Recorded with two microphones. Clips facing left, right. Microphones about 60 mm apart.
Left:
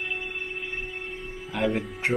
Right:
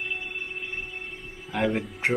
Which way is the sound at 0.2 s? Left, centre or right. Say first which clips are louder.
Left 1 dB; left.